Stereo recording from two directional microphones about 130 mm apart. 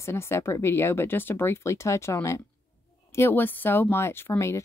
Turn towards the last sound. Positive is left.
turn(degrees=20)  # may be behind; listen again after turning